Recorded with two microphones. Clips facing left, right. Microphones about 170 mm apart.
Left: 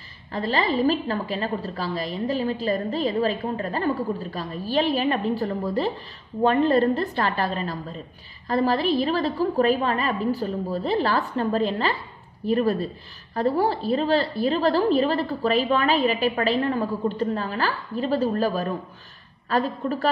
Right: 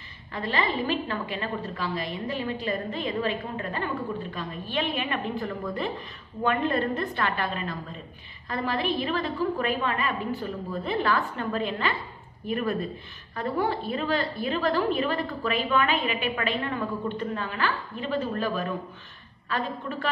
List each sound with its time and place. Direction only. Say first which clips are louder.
0.3 s a woman's voice: left 4 dB; 35° left (ahead or behind)